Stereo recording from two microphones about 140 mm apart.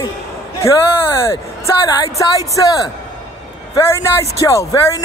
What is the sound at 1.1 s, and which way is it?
Speech, 20° left (ahead or behind).